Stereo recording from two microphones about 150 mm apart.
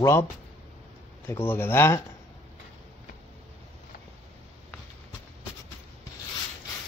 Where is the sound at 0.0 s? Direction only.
15° left (ahead or behind).